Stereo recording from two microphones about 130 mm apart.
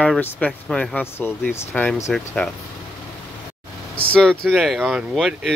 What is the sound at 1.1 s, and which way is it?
Speech, 15° left (ahead or behind).